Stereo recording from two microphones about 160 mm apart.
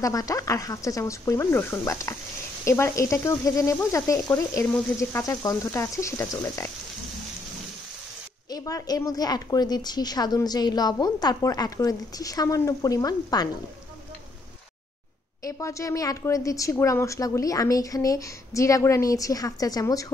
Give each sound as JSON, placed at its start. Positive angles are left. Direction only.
{"t": 0.0, "sound": "a woman's voice", "side_deg": 20}
{"t": 8.5, "sound": "a woman's voice", "side_deg": 20}
{"t": 15.4, "sound": "a woman's voice", "side_deg": 20}